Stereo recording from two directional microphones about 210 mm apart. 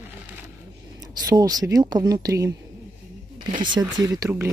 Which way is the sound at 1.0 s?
20° right (ahead or behind).